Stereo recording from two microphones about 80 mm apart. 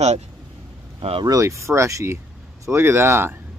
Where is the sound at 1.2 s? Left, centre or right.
Right.